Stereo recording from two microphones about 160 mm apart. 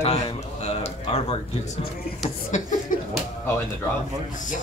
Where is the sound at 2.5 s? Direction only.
50° left (ahead or behind).